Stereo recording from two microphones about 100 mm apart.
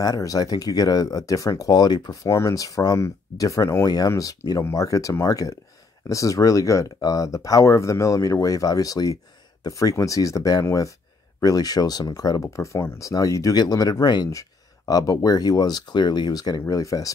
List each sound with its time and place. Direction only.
0.0 s speech: 35° left (ahead or behind)
2.2 s speech: 30° left (ahead or behind)